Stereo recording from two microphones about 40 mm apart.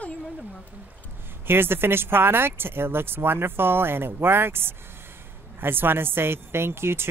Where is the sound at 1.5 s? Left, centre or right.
Right.